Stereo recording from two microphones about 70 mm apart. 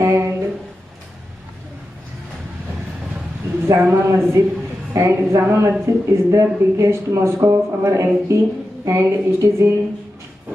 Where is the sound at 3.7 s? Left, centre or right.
Right.